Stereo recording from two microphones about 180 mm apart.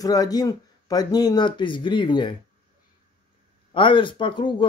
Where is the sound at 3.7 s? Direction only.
30° left (ahead or behind).